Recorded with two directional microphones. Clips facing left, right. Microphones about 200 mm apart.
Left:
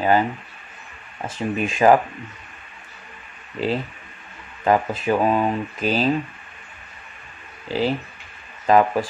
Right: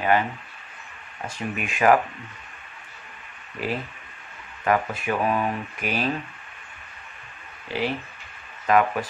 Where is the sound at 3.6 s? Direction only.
25° left (ahead or behind).